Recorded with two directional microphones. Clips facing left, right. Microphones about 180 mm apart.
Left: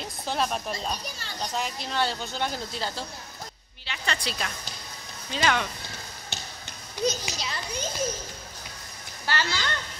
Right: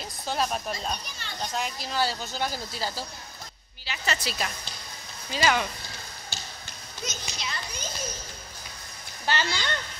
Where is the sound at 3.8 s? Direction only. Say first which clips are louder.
Right 1 dB; 5° right (ahead or behind).